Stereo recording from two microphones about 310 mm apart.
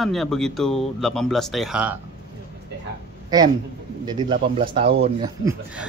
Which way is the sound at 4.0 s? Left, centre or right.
Centre.